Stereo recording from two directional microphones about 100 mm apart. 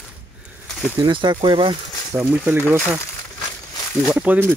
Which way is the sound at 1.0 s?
55° right (ahead or behind).